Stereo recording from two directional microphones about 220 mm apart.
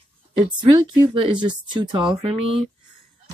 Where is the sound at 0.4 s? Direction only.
20° right (ahead or behind).